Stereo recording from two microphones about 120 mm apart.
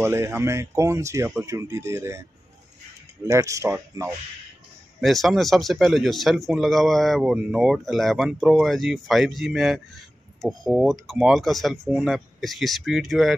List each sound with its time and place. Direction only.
0.0 s speech: 20° right (ahead or behind)
3.3 s speech: 25° right (ahead or behind)
5.0 s speech: centre (ahead or behind)